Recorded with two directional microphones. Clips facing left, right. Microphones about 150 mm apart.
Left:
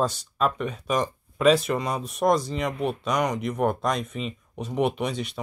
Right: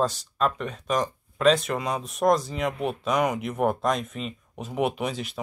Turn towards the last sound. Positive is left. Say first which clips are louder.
# left 1 dB
turn(degrees=0)  # may be behind; listen again after turning